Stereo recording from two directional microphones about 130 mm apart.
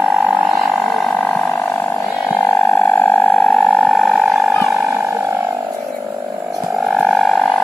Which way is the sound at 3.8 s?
Centre (ahead or behind).